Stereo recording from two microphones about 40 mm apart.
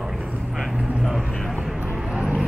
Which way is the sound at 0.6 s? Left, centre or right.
Centre.